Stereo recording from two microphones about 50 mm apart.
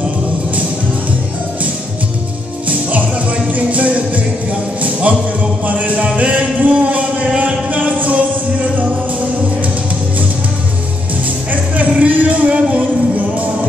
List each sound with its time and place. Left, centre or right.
2.7 s music: right
5.7 s music: right
11.5 s music: right